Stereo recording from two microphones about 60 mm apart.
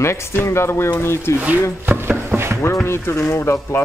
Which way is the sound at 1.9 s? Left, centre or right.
Right.